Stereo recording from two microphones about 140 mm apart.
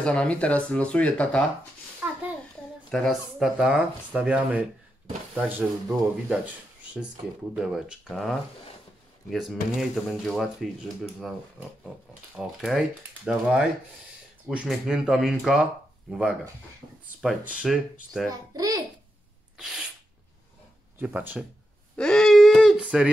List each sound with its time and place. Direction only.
0.0 s speech: 5° left (ahead or behind)
2.9 s speech: centre (ahead or behind)
12.4 s speech: 5° right (ahead or behind)
18.3 s a child's voice: 25° right (ahead or behind)
19.5 s sneeze: 5° right (ahead or behind)
21.0 s speech: 15° right (ahead or behind)
21.9 s a sound: 5° left (ahead or behind)